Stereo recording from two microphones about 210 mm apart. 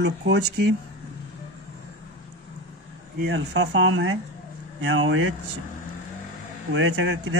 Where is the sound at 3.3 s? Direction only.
60° right (ahead or behind).